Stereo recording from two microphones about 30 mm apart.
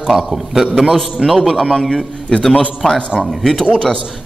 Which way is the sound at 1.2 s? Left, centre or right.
Centre.